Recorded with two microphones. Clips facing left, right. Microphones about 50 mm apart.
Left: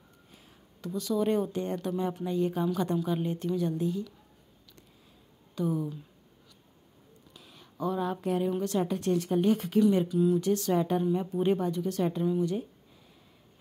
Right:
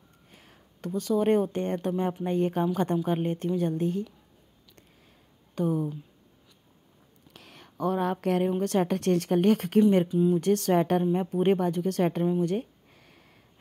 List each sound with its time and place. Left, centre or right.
0.3 s speech: right
5.5 s speech: right
7.3 s a sound: right
8.5 s speech: right
10.0 s speech: right
10.4 s speech: right